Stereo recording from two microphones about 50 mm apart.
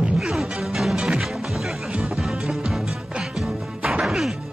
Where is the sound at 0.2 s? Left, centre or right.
Centre.